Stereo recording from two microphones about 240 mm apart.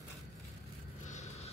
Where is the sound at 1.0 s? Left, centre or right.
Left.